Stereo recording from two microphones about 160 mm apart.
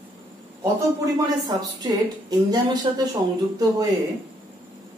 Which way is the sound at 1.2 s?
25° right (ahead or behind).